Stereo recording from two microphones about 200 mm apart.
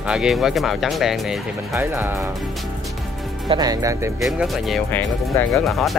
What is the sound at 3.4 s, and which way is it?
Speech, 20° right (ahead or behind).